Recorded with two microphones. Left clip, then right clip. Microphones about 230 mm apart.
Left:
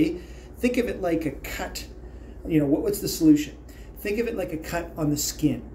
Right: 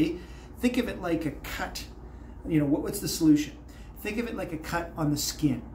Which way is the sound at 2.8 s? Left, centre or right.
Centre.